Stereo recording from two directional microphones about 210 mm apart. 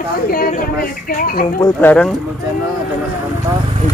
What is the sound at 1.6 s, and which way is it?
Speech, 15° left (ahead or behind).